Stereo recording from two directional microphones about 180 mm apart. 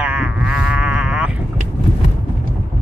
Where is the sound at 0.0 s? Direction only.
5° right (ahead or behind).